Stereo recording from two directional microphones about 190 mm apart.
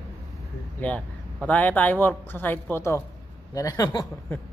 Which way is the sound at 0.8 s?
10° left (ahead or behind).